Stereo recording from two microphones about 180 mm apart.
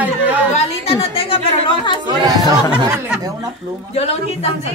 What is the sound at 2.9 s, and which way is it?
Speech, 10° right (ahead or behind).